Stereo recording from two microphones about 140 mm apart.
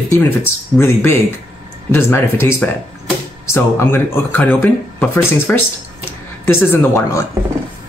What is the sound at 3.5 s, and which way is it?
Speech, 15° left (ahead or behind).